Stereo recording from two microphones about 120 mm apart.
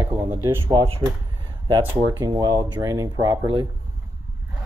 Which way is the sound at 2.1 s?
30° right (ahead or behind).